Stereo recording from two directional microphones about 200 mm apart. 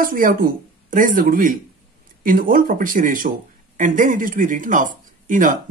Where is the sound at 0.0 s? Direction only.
45° right (ahead or behind).